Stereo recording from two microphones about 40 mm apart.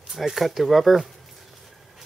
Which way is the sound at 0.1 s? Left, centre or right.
Centre.